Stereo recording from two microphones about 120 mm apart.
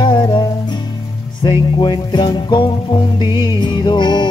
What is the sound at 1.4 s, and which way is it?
Music, 40° left (ahead or behind).